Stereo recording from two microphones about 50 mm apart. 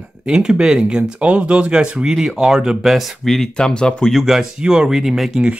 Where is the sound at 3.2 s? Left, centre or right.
Centre.